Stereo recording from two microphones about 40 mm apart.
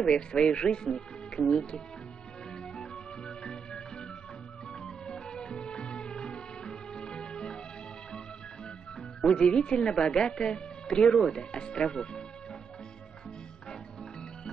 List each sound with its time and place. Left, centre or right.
0.0 s a woman's voice: left
2.7 s music: centre
9.2 s a woman's voice: left
11.0 s a woman's voice: centre